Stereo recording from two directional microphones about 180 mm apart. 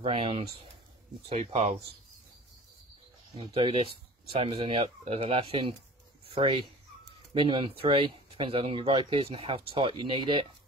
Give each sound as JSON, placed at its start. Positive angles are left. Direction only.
{"t": 0.0, "sound": "speech", "side_deg": -30}
{"t": 3.3, "sound": "speech", "side_deg": -30}